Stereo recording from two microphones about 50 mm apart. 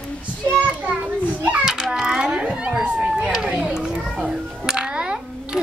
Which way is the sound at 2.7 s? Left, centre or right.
Centre.